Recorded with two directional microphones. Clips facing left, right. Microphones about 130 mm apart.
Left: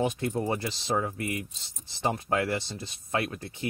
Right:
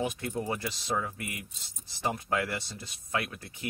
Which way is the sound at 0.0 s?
30° left (ahead or behind).